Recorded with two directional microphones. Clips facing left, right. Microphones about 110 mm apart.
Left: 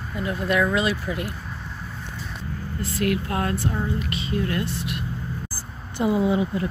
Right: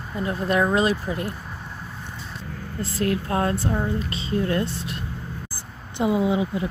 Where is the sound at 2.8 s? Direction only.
30° right (ahead or behind).